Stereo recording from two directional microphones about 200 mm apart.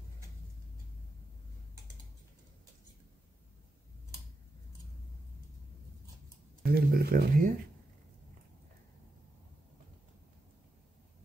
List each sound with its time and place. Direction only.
6.6 s speech: 45° right (ahead or behind)